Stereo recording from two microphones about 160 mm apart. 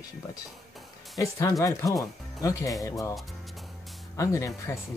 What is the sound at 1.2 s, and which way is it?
Speech, 20° left (ahead or behind).